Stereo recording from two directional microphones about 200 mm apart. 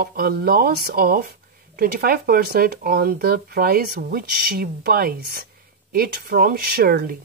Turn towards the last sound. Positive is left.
turn(degrees=-50)  # may be behind; listen again after turning